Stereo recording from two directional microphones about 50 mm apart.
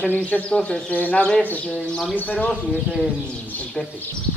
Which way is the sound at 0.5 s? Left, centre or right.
Centre.